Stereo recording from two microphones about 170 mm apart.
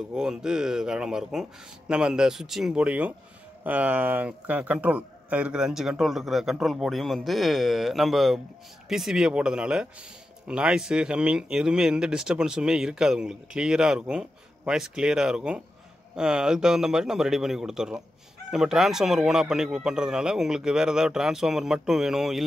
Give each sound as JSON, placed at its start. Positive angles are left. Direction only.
{"t": 0.1, "sound": "speech", "side_deg": -5}